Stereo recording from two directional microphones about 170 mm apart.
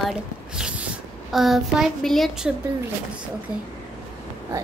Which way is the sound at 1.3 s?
Centre (ahead or behind).